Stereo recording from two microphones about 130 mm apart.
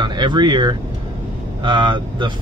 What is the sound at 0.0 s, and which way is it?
Speech, 35° right (ahead or behind).